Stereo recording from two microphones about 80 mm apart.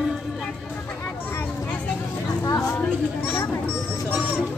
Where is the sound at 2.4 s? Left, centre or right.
Left.